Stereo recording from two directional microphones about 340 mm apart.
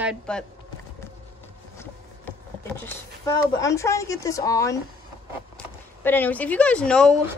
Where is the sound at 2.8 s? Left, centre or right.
Centre.